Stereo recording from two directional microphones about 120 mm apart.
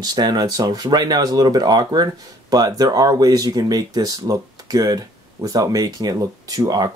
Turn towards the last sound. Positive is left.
turn(degrees=-30)  # may be behind; listen again after turning